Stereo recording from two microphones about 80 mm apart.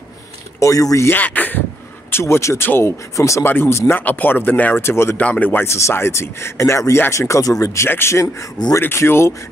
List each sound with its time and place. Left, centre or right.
0.6 s speech: left
1.0 s speech: left
3.4 s speech: left
4.8 s speech: left
5.2 s speech: centre